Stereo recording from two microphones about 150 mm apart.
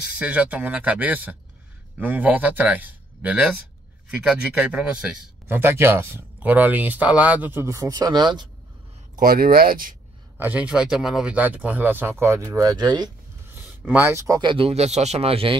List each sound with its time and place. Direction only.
0.2 s speech: 10° right (ahead or behind); by 8.5 s 30° right (ahead or behind)
9.1 s speech: 75° right (ahead or behind)
10.3 s speech: 10° right (ahead or behind); by 13.1 s 30° right (ahead or behind)
13.8 s speech: 15° right (ahead or behind); by 15.5 s 40° right (ahead or behind)